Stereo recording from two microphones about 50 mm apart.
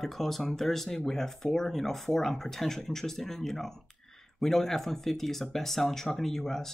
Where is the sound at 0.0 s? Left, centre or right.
Centre.